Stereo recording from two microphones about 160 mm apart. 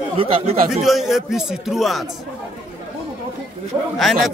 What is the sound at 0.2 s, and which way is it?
Speech, 35° right (ahead or behind).